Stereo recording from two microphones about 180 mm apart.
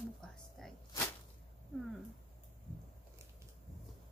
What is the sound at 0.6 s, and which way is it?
Whip, centre (ahead or behind).